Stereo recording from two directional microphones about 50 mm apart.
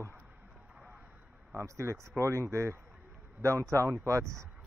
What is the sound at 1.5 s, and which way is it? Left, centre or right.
Speech, right.